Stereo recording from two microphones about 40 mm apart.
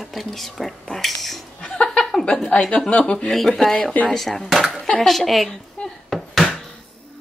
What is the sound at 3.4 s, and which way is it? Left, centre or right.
Speech, centre.